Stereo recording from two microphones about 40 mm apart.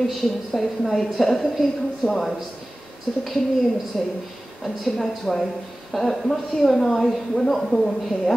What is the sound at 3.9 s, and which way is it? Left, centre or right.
A woman's voice, centre.